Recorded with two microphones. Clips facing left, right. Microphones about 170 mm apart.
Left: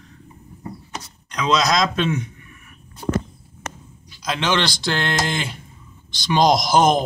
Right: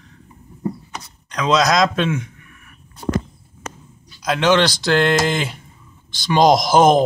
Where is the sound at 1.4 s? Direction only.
5° right (ahead or behind).